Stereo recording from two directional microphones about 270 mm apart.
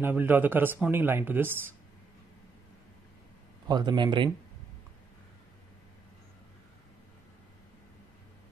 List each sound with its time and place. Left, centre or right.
0.0 s speech: centre
3.6 s speech: centre